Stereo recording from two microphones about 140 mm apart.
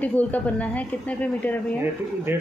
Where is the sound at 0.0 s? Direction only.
10° left (ahead or behind).